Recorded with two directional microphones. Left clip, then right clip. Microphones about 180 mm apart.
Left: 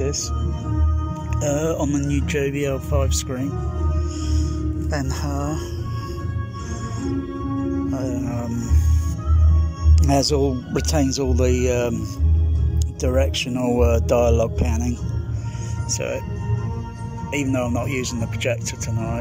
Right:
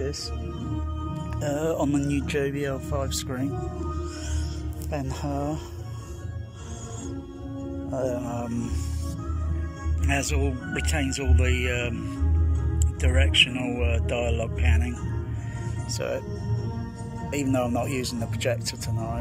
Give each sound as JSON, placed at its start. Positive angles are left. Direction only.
{"t": 0.0, "sound": "speech", "side_deg": 15}
{"t": 1.4, "sound": "speech", "side_deg": 10}
{"t": 4.9, "sound": "speech", "side_deg": -15}
{"t": 7.9, "sound": "speech", "side_deg": -15}
{"t": 10.0, "sound": "speech", "side_deg": 30}
{"t": 13.0, "sound": "speech", "side_deg": 20}
{"t": 17.3, "sound": "a man's voice", "side_deg": 0}